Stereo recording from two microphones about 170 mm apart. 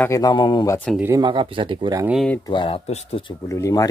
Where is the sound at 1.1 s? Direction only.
30° right (ahead or behind).